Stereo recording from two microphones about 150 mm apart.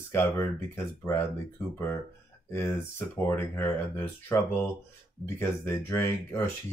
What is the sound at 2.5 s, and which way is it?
Speech, 15° left (ahead or behind).